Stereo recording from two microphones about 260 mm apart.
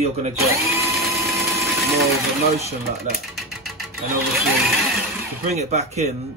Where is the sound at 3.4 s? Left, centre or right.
Centre.